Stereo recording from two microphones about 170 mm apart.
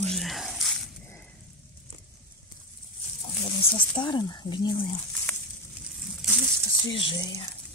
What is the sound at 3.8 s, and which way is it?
Speech, 25° left (ahead or behind).